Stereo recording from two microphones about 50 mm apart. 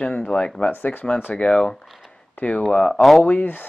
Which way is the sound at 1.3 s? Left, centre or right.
Left.